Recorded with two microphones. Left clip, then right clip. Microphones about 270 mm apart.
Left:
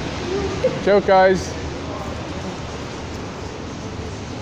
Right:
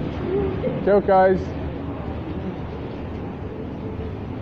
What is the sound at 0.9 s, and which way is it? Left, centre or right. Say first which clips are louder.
Speech: left 2 dB; left.